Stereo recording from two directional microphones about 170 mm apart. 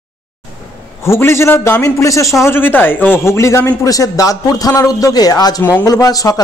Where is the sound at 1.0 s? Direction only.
15° left (ahead or behind).